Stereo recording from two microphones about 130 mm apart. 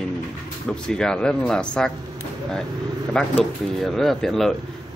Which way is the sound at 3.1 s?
5° left (ahead or behind).